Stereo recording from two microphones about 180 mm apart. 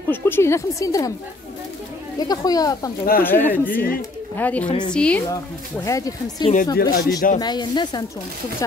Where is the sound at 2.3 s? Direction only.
20° left (ahead or behind).